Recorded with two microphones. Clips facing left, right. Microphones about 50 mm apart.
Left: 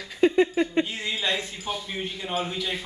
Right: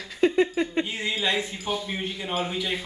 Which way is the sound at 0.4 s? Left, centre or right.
Left.